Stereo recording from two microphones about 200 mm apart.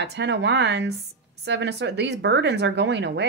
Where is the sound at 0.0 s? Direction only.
60° right (ahead or behind).